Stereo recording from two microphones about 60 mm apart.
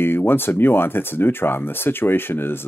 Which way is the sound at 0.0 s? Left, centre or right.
Left.